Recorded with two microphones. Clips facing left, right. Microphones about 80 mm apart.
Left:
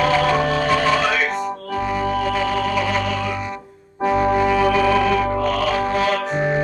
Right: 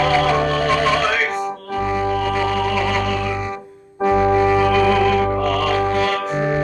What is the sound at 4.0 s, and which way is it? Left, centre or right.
Brass instrument, centre.